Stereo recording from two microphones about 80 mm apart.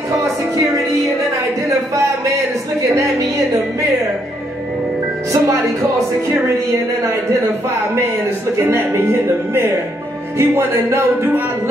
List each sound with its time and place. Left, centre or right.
8.6 s music: right
10.3 s music: right